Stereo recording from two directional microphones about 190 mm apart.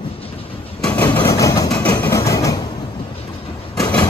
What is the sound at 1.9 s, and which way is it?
Train, 15° left (ahead or behind).